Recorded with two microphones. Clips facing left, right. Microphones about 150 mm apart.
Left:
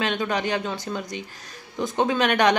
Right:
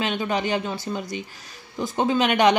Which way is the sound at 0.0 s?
5° right (ahead or behind).